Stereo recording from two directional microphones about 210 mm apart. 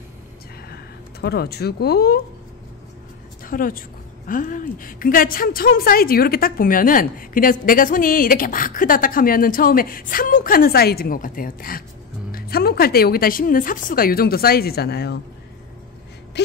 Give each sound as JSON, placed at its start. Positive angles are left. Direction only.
{"t": 1.2, "sound": "speech", "side_deg": 50}
{"t": 3.4, "sound": "a woman's voice", "side_deg": 40}